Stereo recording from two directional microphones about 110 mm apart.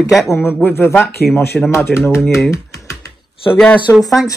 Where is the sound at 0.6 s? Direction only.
20° left (ahead or behind).